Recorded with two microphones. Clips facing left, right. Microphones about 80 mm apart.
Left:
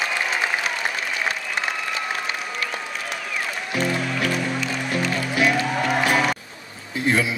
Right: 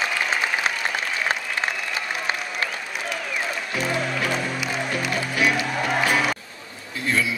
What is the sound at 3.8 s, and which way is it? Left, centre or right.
Music, centre.